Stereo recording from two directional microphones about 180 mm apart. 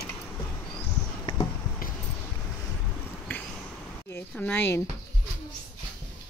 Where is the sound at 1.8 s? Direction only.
55° left (ahead or behind).